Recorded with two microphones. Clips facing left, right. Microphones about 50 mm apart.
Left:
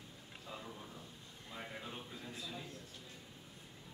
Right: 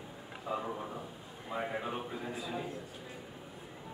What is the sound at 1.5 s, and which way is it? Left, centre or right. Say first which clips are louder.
A man's voice: right 11 dB; right.